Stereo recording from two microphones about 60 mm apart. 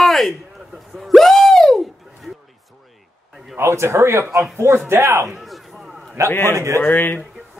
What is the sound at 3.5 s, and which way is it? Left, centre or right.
A man's voice, right.